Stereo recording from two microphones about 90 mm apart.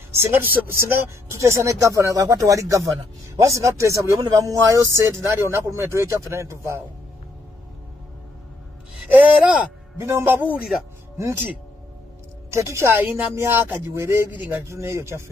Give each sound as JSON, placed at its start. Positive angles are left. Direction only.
{"t": 0.1, "sound": "speech", "side_deg": -25}
{"t": 1.3, "sound": "speech", "side_deg": -35}
{"t": 9.1, "sound": "speech", "side_deg": -15}
{"t": 9.9, "sound": "speech", "side_deg": -30}
{"t": 12.4, "sound": "speech", "side_deg": -35}